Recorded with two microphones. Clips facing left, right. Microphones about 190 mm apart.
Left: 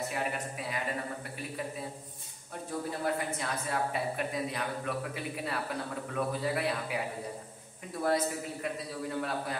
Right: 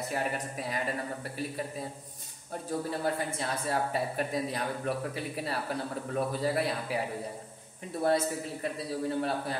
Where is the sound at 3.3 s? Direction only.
30° right (ahead or behind).